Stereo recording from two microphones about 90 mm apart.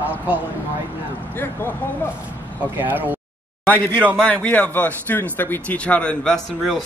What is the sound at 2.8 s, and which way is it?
Speech, 20° right (ahead or behind).